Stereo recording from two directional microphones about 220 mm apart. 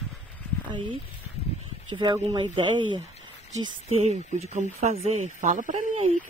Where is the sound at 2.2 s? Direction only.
20° right (ahead or behind).